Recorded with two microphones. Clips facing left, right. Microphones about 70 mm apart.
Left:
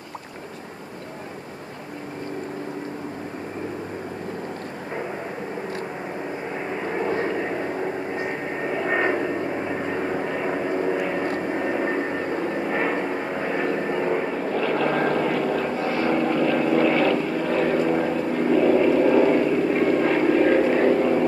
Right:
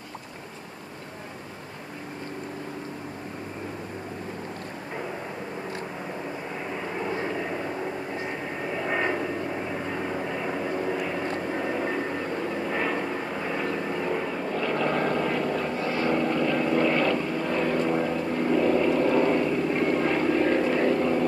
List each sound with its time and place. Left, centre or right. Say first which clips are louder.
6.9 s vehicle: left 6 dB; left
14.5 s vehicle: left 3 dB; centre
15.6 s vehicle: left 3 dB; left
16.1 s vehicle: left 3 dB; centre
17.6 s vehicle: left 4 dB; centre